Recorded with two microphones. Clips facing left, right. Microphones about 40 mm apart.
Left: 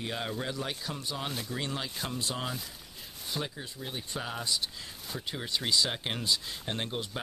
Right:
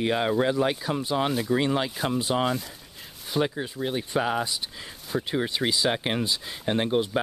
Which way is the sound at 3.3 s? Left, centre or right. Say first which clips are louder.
Right 12 dB; right.